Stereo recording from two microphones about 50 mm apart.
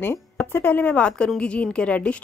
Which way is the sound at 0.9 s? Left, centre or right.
Left.